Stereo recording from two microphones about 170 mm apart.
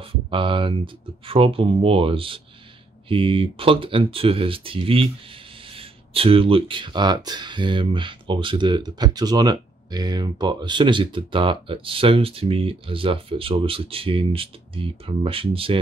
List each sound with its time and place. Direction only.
0.0 s speech: 30° right (ahead or behind)